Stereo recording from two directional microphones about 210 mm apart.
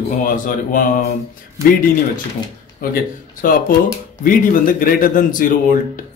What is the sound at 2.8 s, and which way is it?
A man's voice, 40° left (ahead or behind).